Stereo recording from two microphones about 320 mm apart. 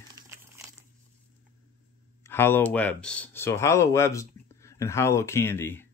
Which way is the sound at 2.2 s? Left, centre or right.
Centre.